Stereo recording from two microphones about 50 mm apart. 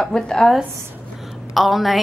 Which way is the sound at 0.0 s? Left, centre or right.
Centre.